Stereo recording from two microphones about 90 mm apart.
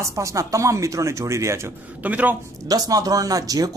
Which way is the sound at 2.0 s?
15° right (ahead or behind).